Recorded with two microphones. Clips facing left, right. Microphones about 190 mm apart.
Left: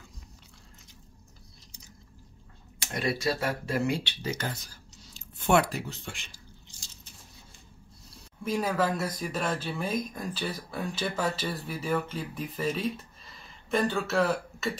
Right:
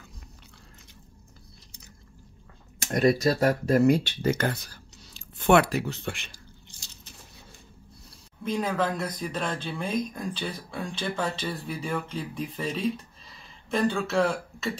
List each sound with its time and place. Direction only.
2.8 s speech: 45° right (ahead or behind); by 7.2 s 65° right (ahead or behind)
8.5 s speech: 5° left (ahead or behind)